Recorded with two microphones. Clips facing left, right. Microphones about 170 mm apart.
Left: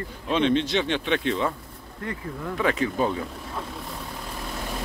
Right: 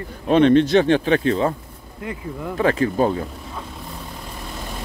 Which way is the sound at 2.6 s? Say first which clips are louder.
Right 6 dB; 35° right (ahead or behind).